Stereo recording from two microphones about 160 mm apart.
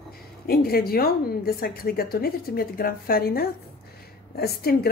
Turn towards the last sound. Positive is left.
turn(degrees=75)  # may be behind; listen again after turning